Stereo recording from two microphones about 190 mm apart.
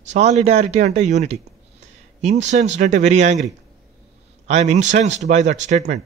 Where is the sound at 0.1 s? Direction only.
35° right (ahead or behind).